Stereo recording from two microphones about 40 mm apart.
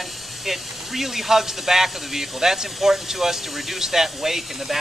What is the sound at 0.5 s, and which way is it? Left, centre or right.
Speech, centre.